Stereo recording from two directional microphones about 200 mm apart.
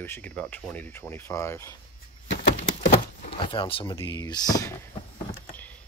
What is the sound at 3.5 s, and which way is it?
Speech, 25° left (ahead or behind).